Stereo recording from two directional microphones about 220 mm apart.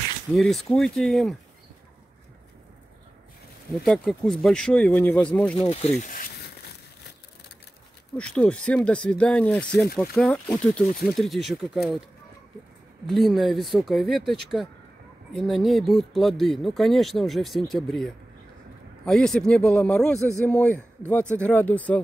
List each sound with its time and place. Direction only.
0.4 s speech: centre (ahead or behind)
3.8 s speech: centre (ahead or behind)
5.7 s speech: 30° left (ahead or behind)
8.2 s speech: 5° left (ahead or behind)
13.1 s a man's voice: centre (ahead or behind)